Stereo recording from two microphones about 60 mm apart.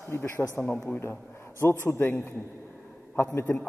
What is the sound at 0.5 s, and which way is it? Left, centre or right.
A man's voice, left.